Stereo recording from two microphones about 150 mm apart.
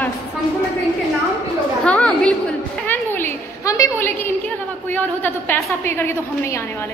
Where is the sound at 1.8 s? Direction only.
5° left (ahead or behind).